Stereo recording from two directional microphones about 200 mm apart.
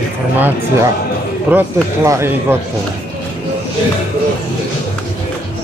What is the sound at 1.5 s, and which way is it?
Speech, 10° right (ahead or behind).